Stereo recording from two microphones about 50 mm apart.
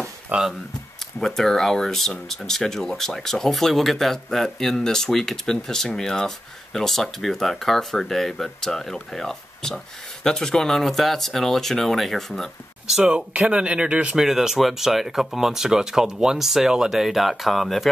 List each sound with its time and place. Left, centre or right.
0.3 s speech: right
1.2 s speech: centre
13.0 s speech: right
14.1 s speech: centre